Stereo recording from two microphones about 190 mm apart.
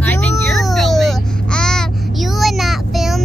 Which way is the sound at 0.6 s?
Centre (ahead or behind).